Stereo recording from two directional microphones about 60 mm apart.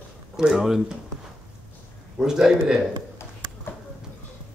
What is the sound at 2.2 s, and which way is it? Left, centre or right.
Speech, centre.